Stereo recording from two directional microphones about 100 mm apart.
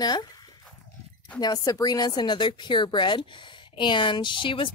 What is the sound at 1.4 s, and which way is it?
Speech, 40° left (ahead or behind).